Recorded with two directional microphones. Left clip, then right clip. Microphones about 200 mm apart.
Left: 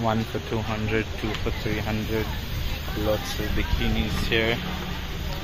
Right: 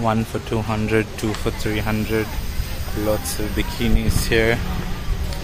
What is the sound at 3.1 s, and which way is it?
Speech, 45° right (ahead or behind).